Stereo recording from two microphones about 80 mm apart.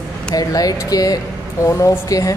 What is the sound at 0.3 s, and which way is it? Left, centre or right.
Speech, left.